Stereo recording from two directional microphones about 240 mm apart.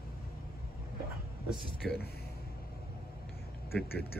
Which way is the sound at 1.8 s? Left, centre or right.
Centre.